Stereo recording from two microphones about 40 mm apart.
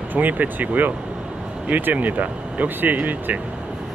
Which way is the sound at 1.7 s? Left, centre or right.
Right.